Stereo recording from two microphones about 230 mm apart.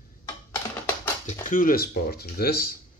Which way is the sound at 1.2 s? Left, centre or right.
Left.